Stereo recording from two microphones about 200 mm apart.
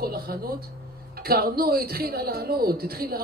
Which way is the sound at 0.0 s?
50° right (ahead or behind).